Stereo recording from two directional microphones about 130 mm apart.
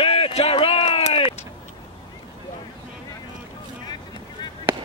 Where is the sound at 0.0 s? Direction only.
50° left (ahead or behind).